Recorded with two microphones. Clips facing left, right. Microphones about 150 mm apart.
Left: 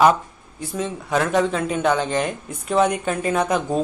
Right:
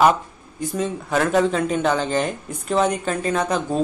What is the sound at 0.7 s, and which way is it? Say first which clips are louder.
A man's voice: even; centre (ahead or behind).